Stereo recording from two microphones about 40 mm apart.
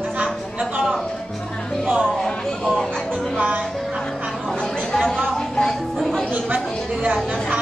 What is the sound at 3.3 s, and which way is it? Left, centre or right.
Speech, right.